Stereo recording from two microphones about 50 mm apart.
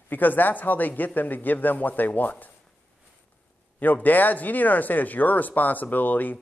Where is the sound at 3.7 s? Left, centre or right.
Left.